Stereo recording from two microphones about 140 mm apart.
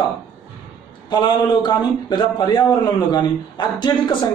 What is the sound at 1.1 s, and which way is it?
Speech, 30° left (ahead or behind).